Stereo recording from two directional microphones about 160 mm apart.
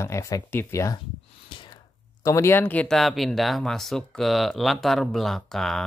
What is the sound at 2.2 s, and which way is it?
Speech, 20° left (ahead or behind).